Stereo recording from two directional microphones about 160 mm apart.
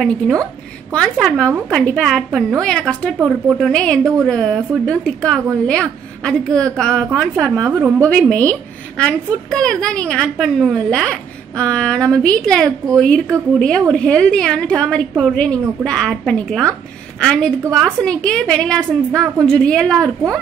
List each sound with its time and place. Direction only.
0.9 s a woman's voice: centre (ahead or behind)
3.2 s a woman's voice: 10° right (ahead or behind)
3.5 s a woman's voice: 5° left (ahead or behind)
7.5 s a woman's voice: 15° right (ahead or behind)
8.1 s a woman's voice: 5° left (ahead or behind)